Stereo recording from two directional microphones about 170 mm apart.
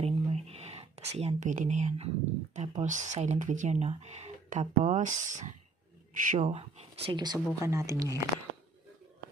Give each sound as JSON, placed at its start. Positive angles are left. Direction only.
{"t": 0.0, "sound": "a sound", "side_deg": -40}
{"t": 2.5, "sound": "speech", "side_deg": -40}
{"t": 6.5, "sound": "speech", "side_deg": -35}